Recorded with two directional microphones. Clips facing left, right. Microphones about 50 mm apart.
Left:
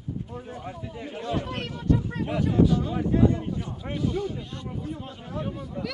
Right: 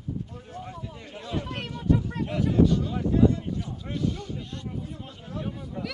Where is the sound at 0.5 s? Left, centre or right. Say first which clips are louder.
Right 3 dB; centre.